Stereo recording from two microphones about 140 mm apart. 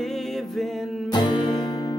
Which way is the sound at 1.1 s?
30° left (ahead or behind).